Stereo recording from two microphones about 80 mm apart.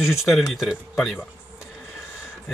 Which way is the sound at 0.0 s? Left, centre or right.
Centre.